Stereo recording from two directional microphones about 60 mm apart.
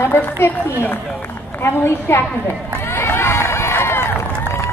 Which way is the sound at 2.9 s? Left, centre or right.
Left.